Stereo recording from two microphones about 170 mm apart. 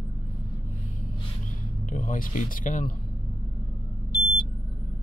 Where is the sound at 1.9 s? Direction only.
50° left (ahead or behind).